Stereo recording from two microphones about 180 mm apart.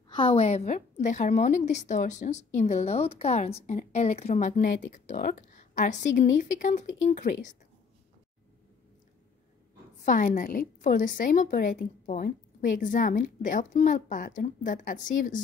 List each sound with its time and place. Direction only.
0.1 s a woman's voice: 30° left (ahead or behind); by 7.5 s 45° left (ahead or behind)
10.0 s a woman's voice: 45° left (ahead or behind)